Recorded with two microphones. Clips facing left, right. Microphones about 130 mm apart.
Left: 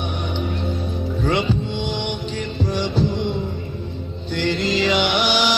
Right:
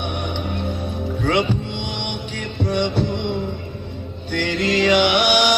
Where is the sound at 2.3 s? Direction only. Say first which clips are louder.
Right 4 dB; 65° right (ahead or behind).